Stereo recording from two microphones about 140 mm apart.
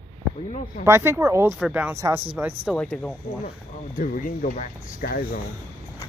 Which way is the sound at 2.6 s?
5° left (ahead or behind).